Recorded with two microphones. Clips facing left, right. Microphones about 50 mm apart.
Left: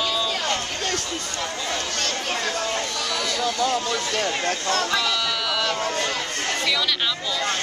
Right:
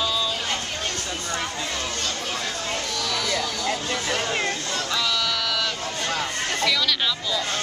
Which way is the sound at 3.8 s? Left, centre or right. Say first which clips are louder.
Left 1 dB; right.